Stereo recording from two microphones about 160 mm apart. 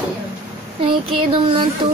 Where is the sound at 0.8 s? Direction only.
30° right (ahead or behind).